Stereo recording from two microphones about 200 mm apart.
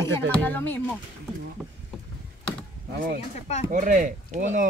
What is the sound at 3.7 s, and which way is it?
Speech, 40° right (ahead or behind).